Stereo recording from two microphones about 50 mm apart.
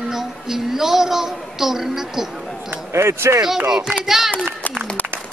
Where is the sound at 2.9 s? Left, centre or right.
Right.